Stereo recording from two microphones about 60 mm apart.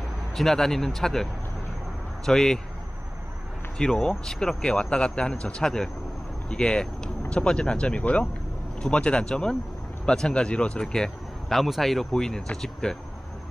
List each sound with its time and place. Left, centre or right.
0.4 s speech: centre
3.7 s speech: centre